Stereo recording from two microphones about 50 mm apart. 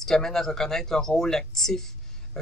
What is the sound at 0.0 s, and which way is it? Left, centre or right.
Speech, centre.